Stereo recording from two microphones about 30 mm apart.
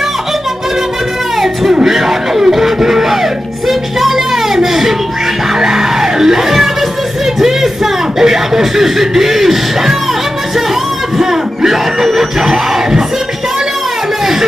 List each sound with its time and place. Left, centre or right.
1.4 s music: centre
4.6 s a sound: centre
5.6 s music: centre
11.1 s music: centre